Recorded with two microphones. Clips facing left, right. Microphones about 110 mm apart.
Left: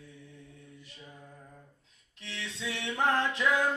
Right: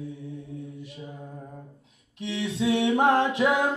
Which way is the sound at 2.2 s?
15° right (ahead or behind).